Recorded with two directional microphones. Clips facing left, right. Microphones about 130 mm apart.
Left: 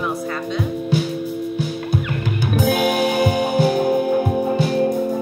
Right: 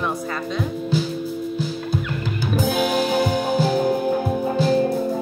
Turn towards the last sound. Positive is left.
turn(degrees=60)  # may be behind; listen again after turning